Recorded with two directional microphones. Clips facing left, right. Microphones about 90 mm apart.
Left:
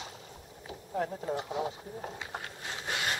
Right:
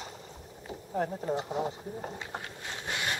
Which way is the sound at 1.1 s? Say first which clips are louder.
Right 2 dB; 10° right (ahead or behind).